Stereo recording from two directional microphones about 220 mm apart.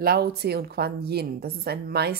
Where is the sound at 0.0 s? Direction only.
45° right (ahead or behind).